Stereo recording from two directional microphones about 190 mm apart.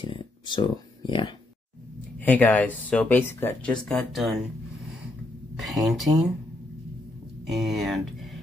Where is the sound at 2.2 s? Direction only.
10° left (ahead or behind).